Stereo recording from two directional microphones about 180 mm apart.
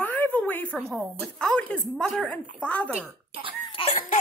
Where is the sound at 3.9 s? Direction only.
40° left (ahead or behind).